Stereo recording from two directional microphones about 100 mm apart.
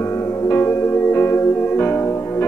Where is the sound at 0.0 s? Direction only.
30° left (ahead or behind).